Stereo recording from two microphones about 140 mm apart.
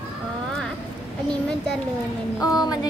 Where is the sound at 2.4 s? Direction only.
25° left (ahead or behind).